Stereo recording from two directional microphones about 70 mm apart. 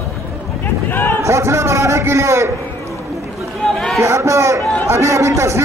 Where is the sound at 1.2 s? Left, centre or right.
Right.